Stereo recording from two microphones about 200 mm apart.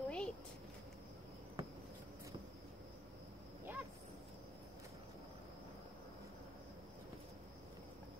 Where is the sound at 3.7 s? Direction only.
10° right (ahead or behind).